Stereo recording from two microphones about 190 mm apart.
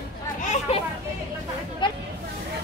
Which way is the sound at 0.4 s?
40° left (ahead or behind).